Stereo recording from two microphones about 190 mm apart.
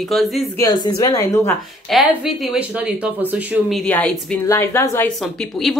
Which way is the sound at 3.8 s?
10° left (ahead or behind).